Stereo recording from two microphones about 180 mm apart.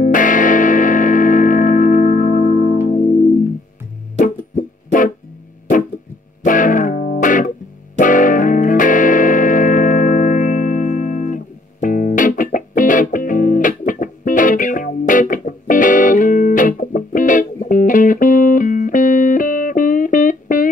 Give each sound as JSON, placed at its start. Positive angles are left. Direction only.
{"t": 0.0, "sound": "music", "side_deg": 45}
{"t": 4.2, "sound": "music", "side_deg": 45}
{"t": 6.4, "sound": "music", "side_deg": 45}